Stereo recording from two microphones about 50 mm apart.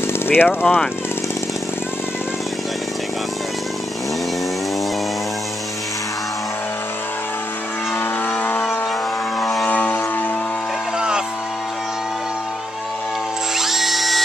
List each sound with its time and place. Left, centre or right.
0.0 s speech: left
8.0 s vehicle: left
9.4 s vehicle: centre
9.7 s vehicle: left
11.0 s music: centre
13.6 s music: centre